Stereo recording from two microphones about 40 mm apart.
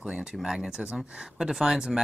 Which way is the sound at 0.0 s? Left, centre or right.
Right.